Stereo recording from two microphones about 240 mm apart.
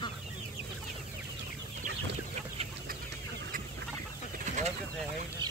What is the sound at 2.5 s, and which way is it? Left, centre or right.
Chicken, right.